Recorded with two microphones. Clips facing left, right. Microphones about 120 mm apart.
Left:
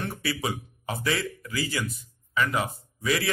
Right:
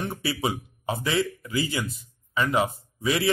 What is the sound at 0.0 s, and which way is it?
A man's voice, 25° right (ahead or behind).